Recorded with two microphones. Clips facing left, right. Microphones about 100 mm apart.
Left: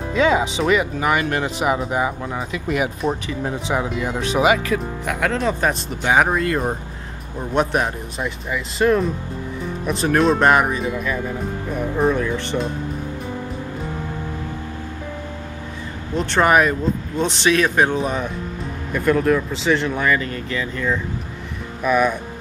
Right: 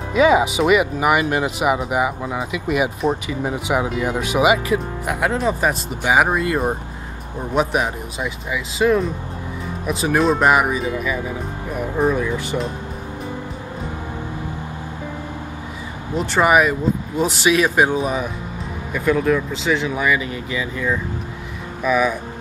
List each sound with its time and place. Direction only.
0.1 s speech: 15° right (ahead or behind)
5.4 s speech: 5° right (ahead or behind)
7.5 s speech: 5° right (ahead or behind)
16.2 s speech: 5° right (ahead or behind)